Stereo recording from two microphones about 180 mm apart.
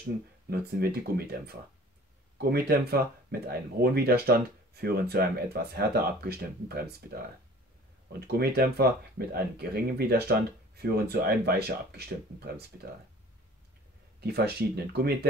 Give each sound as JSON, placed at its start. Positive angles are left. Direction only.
{"t": 0.5, "sound": "speech", "side_deg": -60}
{"t": 8.2, "sound": "speech", "side_deg": -60}
{"t": 14.2, "sound": "speech", "side_deg": -65}